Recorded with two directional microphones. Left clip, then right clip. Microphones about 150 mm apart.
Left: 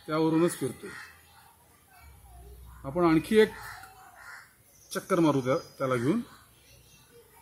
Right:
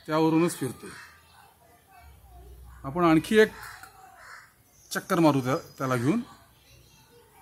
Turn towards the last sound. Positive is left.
turn(degrees=-65)  # may be behind; listen again after turning